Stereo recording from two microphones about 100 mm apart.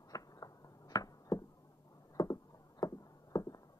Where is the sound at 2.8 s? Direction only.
35° left (ahead or behind).